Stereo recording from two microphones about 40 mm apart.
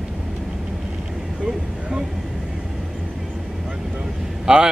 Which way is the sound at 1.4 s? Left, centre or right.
Centre.